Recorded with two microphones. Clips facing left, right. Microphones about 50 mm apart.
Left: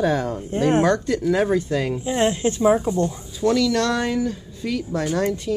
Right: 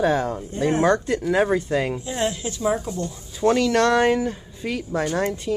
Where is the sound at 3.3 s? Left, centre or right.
Right.